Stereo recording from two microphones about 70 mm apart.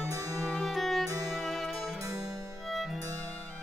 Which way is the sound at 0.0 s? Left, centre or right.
Right.